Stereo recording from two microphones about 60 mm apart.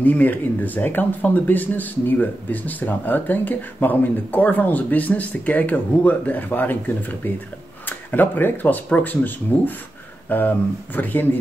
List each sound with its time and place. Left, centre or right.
0.0 s speech: left
8.1 s speech: left